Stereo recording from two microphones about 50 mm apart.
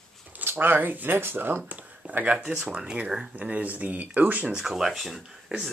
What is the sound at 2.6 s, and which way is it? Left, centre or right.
Speech, centre.